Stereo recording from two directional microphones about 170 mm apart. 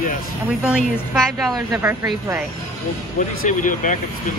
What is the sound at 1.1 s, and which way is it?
Speech, centre (ahead or behind).